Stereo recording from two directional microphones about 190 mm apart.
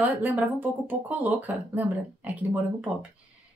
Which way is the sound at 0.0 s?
10° right (ahead or behind).